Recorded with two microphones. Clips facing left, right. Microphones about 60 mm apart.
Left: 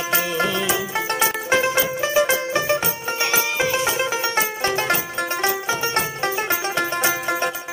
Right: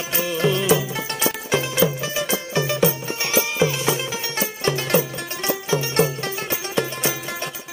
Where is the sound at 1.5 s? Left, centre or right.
Left.